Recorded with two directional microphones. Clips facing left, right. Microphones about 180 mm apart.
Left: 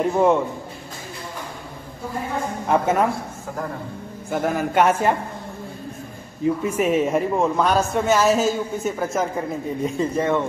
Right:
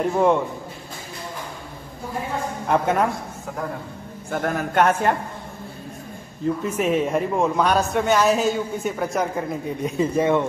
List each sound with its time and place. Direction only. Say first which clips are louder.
0.0 s a man's voice: left 1 dB; 5° left (ahead or behind)
2.7 s a man's voice: left 1 dB; centre (ahead or behind)
4.3 s a man's voice: left 2 dB; 5° left (ahead or behind)
6.4 s a man's voice: left 2 dB; 5° left (ahead or behind)
9.9 s speech: right 3 dB; 10° right (ahead or behind)